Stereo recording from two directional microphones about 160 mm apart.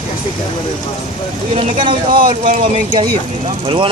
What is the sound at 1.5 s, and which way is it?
Speech, 30° right (ahead or behind).